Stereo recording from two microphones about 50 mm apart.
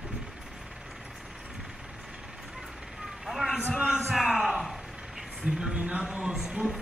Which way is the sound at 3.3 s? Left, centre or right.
Centre.